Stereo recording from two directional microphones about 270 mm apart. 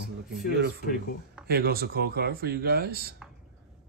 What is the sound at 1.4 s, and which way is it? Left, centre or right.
Speech, right.